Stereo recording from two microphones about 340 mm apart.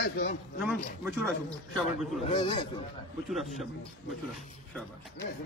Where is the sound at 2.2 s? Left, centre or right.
Centre.